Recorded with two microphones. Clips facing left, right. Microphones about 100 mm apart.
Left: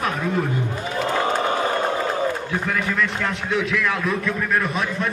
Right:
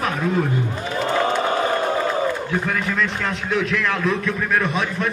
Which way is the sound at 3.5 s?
Centre (ahead or behind).